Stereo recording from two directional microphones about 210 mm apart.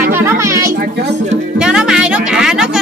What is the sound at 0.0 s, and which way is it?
Music, 10° right (ahead or behind).